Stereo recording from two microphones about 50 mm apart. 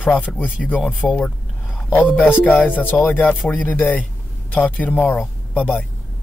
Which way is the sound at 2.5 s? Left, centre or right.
Centre.